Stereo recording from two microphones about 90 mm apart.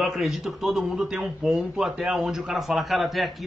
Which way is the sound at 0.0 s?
Centre (ahead or behind).